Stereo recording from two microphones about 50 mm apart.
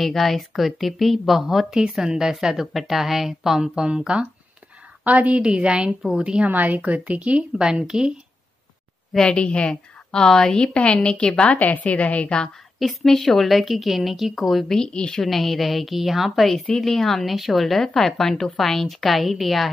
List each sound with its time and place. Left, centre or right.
0.0 s a woman's voice: centre
1.8 s a woman's voice: centre
5.0 s a woman's voice: right
5.4 s a woman's voice: centre
6.4 s a woman's voice: right; by 8.1 s centre
9.1 s a woman's voice: centre
11.5 s a woman's voice: left
12.7 s a woman's voice: centre
14.7 s a woman's voice: centre
15.2 s a woman's voice: centre
16.7 s a woman's voice: centre